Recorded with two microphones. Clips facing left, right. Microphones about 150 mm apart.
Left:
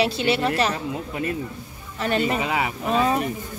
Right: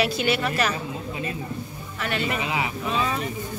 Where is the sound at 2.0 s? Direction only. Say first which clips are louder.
Left 5 dB; 35° left (ahead or behind).